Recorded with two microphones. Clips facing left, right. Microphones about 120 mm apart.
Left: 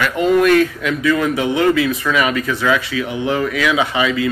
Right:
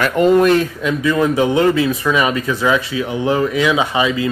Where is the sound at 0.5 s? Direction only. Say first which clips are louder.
Left 1 dB; 25° right (ahead or behind).